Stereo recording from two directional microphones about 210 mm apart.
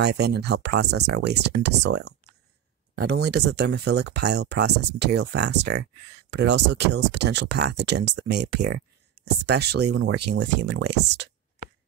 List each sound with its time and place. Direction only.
0.0 s speech: 50° right (ahead or behind)